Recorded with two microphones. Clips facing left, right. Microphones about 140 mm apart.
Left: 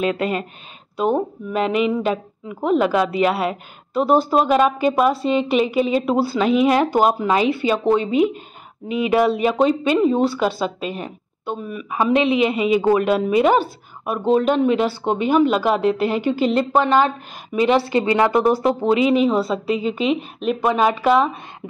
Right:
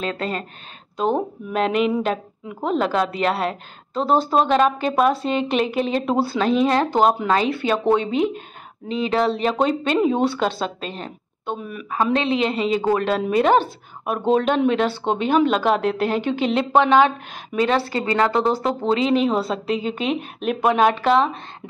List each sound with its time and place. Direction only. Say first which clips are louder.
0.0 s a woman's voice: left 5 dB; 10° left (ahead or behind)
17.7 s a woman's voice: left 3 dB; 20° left (ahead or behind); by 21.3 s 5° left (ahead or behind)